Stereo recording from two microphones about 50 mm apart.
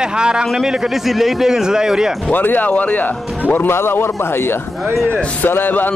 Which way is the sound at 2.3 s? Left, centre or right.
Left.